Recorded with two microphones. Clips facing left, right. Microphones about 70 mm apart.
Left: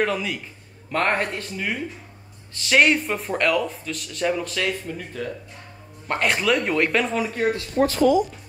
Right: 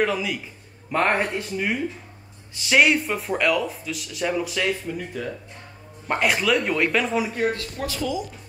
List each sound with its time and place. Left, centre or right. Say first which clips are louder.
0.0 s speech: even; centre
0.9 s speech: right 1 dB; centre
7.7 s speech: left 9 dB; left